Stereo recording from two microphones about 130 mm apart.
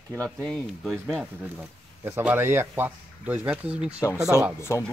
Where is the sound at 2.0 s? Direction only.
15° right (ahead or behind).